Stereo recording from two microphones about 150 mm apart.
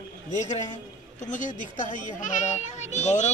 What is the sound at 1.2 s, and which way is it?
A man's voice, 55° left (ahead or behind).